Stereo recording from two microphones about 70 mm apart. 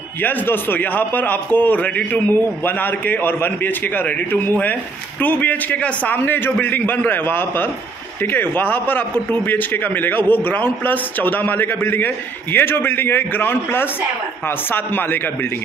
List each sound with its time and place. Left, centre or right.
0.2 s a man's voice: left